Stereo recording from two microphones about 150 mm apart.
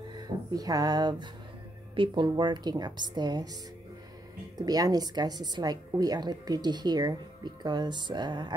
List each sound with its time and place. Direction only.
0.5 s a woman's voice: 25° right (ahead or behind)
4.6 s a woman's voice: 25° right (ahead or behind)